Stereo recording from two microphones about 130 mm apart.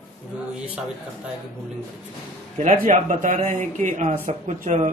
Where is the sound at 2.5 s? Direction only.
75° right (ahead or behind).